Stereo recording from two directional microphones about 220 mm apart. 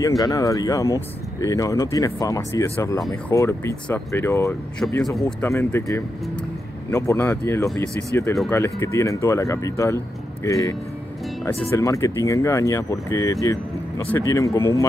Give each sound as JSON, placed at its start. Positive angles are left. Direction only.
{"t": 0.2, "sound": "speech", "side_deg": 15}
{"t": 5.2, "sound": "speech", "side_deg": 10}